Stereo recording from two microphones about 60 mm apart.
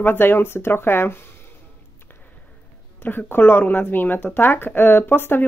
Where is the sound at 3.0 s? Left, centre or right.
Left.